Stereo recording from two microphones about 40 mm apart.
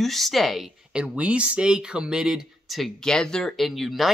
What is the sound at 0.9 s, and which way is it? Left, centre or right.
Speech, right.